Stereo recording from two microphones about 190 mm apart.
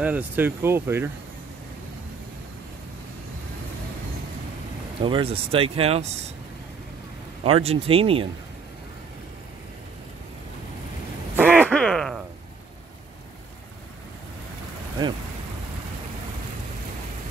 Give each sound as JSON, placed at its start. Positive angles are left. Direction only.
{"t": 0.0, "sound": "speech", "side_deg": -10}
{"t": 5.0, "sound": "speech", "side_deg": -30}
{"t": 7.4, "sound": "speech", "side_deg": -30}
{"t": 11.4, "sound": "a sound", "side_deg": 5}